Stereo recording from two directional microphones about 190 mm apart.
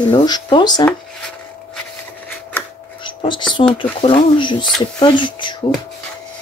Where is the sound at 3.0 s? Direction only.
25° left (ahead or behind).